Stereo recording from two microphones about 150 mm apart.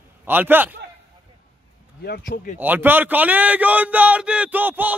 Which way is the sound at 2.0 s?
80° left.